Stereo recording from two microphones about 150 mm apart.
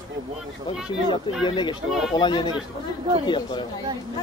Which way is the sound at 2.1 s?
30° left (ahead or behind).